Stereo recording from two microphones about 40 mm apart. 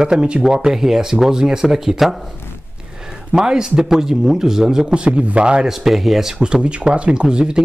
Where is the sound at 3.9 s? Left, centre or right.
Centre.